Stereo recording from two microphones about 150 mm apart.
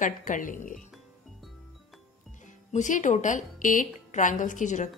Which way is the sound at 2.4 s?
55° left (ahead or behind).